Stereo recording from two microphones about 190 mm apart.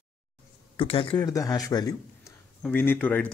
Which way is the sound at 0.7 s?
30° left (ahead or behind).